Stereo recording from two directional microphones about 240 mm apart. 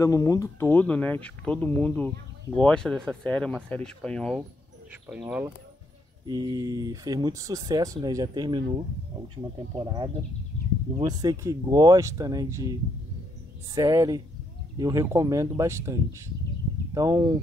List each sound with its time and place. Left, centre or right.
0.0 s speech: centre
6.2 s speech: centre
9.8 s speech: right
13.7 s speech: centre